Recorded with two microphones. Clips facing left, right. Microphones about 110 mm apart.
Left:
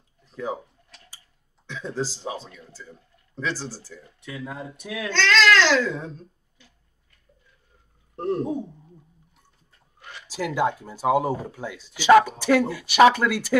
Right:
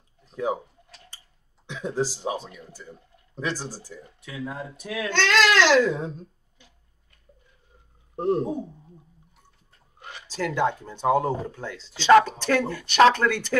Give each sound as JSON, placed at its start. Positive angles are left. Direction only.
{"t": 0.2, "sound": "speech", "side_deg": -15}
{"t": 1.7, "sound": "speech", "side_deg": -15}
{"t": 4.2, "sound": "speech", "side_deg": 0}
{"t": 5.1, "sound": "speech", "side_deg": -15}
{"t": 8.2, "sound": "speech", "side_deg": -15}
{"t": 9.9, "sound": "a sound", "side_deg": -20}
{"t": 10.2, "sound": "speech", "side_deg": 10}